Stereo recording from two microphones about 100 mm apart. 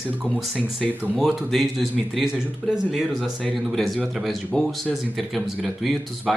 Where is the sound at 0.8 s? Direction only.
Centre (ahead or behind).